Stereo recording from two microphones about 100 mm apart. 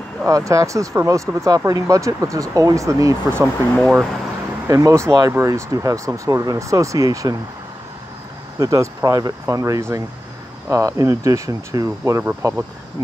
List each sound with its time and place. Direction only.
0.2 s speech: 30° right (ahead or behind)
4.6 s speech: 30° right (ahead or behind)
8.5 s speech: 35° right (ahead or behind)